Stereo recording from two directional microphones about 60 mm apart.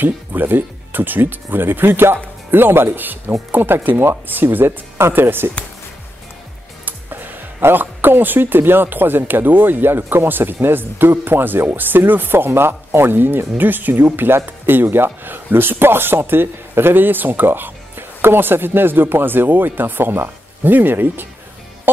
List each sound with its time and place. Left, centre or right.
0.0 s speech: right
6.8 s speech: right
21.9 s music: right